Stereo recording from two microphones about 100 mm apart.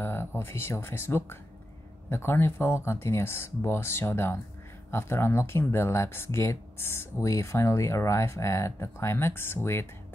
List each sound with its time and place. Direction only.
0.0 s speech: 25° left (ahead or behind)